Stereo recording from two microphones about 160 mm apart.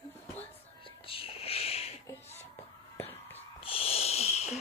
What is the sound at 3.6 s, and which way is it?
Wheeze, 35° left (ahead or behind).